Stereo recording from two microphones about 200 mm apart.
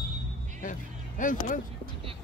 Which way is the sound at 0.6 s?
40° left (ahead or behind).